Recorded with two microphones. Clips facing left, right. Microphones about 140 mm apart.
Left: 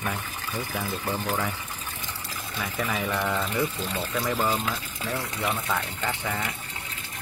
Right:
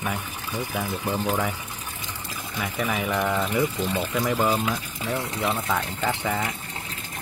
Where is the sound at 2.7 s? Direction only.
10° right (ahead or behind).